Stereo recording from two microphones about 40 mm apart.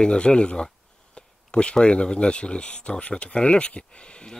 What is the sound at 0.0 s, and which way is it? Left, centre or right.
Speech, left.